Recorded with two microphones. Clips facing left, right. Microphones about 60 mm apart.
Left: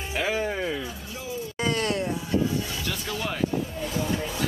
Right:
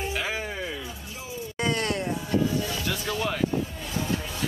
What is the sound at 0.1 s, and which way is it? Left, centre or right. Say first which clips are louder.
Music: left 4 dB; centre.